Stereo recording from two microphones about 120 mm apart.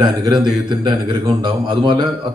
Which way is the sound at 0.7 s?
40° right (ahead or behind).